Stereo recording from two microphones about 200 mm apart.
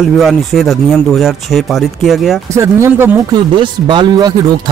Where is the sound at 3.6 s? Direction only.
25° right (ahead or behind).